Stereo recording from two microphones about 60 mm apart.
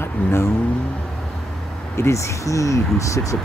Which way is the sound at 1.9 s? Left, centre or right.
Left.